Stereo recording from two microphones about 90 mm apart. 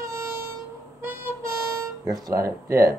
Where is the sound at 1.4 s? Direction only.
40° right (ahead or behind).